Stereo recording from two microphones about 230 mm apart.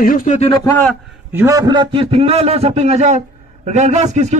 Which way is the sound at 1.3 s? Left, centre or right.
Centre.